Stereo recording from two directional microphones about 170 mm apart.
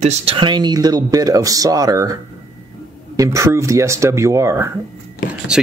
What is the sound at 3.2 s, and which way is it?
Speech, 15° right (ahead or behind).